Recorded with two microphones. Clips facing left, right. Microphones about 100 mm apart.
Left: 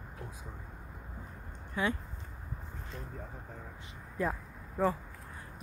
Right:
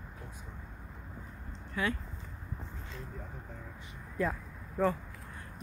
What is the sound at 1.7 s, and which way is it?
Speech, 20° left (ahead or behind).